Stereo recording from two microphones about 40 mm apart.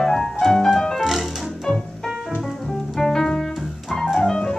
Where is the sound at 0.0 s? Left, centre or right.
Centre.